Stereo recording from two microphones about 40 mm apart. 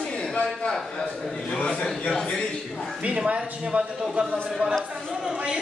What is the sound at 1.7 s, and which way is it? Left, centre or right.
A man's voice, centre.